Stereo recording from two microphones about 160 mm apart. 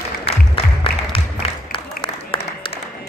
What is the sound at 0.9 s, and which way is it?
Music, 70° left (ahead or behind).